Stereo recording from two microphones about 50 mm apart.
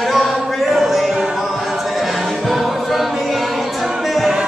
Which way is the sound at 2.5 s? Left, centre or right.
Centre.